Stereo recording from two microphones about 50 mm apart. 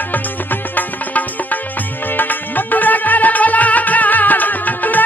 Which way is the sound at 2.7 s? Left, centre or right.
Left.